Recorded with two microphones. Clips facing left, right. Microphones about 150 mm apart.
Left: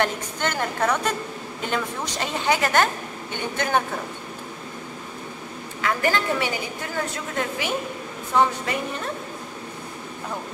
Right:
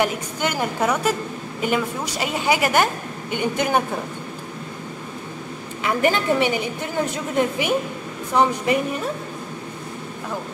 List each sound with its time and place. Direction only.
0.0 s a woman's voice: 10° right (ahead or behind)
5.8 s a woman's voice: 15° right (ahead or behind)